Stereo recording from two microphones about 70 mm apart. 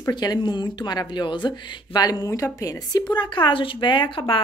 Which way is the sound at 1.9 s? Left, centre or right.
Left.